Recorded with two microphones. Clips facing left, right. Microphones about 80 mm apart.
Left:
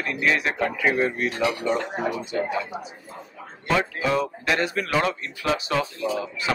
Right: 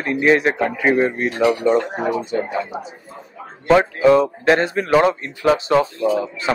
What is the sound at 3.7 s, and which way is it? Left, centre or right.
Speech, right.